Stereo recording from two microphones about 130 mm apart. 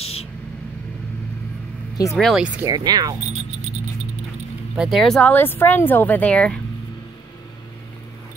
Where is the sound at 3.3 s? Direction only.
60° right (ahead or behind).